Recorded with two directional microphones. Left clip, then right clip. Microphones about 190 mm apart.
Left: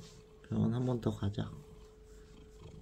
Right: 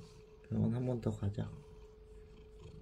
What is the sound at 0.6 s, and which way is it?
Speech, 25° left (ahead or behind).